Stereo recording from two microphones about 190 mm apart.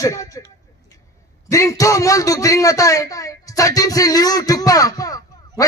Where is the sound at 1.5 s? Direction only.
15° left (ahead or behind).